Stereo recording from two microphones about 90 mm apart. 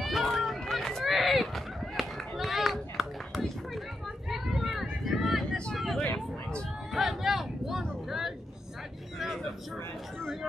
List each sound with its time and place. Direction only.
0.0 s run: centre (ahead or behind)
4.3 s a sound: centre (ahead or behind)
9.2 s vehicle: 5° left (ahead or behind)